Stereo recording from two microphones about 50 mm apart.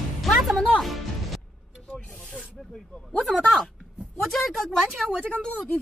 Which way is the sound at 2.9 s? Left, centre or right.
Left.